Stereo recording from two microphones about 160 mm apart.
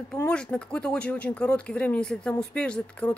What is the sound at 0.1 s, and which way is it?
Speech, 5° left (ahead or behind).